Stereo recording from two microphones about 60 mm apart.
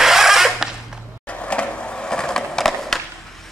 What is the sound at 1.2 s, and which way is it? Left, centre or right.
Skateboard, centre.